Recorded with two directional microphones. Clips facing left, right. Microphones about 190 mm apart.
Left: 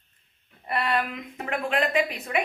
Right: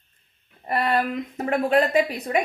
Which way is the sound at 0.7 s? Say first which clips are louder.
Right 4 dB; 40° right (ahead or behind).